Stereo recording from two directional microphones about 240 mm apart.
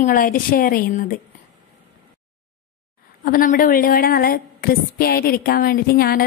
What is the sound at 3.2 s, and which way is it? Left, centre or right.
A woman's voice, left.